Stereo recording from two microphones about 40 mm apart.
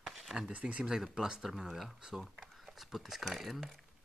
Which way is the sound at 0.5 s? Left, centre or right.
Right.